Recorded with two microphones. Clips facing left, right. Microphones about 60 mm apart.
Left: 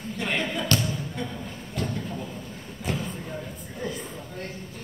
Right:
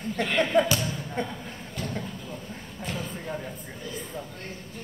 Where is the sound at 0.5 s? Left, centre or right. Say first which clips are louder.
Right 9 dB; right.